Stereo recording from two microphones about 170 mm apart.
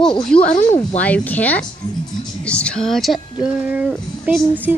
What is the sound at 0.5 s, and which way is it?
Speech, 45° left (ahead or behind).